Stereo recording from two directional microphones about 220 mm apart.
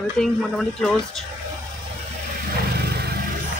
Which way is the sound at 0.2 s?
Centre (ahead or behind).